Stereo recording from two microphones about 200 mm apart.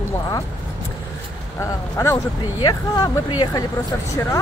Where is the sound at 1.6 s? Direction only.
15° left (ahead or behind).